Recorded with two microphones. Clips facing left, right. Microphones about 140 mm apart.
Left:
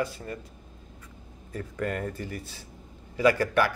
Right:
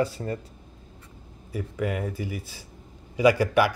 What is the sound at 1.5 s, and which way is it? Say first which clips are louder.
Speech: right 2 dB; 5° right (ahead or behind).